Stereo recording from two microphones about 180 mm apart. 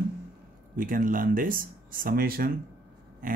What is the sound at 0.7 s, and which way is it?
Speech, 50° right (ahead or behind).